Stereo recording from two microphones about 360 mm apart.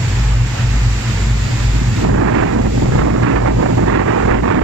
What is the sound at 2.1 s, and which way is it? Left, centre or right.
Vehicle, right.